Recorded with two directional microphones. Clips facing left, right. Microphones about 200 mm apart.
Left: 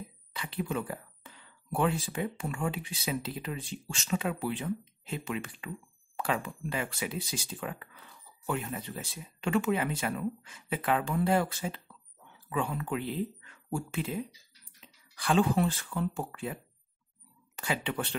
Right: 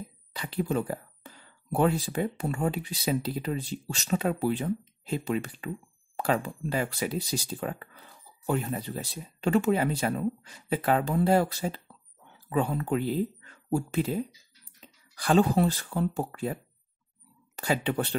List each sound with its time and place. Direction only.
0.3 s speech: 35° right (ahead or behind)
17.6 s speech: 40° right (ahead or behind)